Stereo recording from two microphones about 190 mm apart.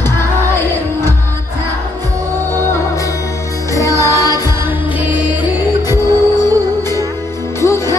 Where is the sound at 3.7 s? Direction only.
15° left (ahead or behind).